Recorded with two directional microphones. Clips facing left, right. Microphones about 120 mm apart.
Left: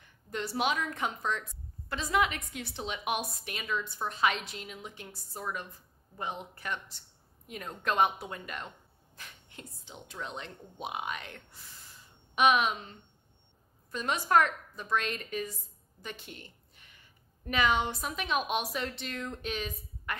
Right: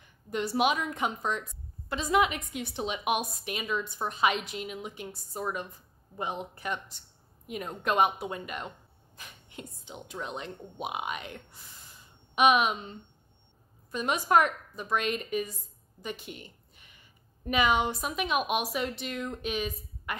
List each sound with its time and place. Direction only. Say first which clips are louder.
0.3 s a woman's voice: right 4 dB; 15° right (ahead or behind)
13.9 s a woman's voice: right 2 dB; 15° right (ahead or behind)
16.0 s a sound: right 5 dB; 15° right (ahead or behind)
17.5 s a woman's voice: right 3 dB; 15° right (ahead or behind)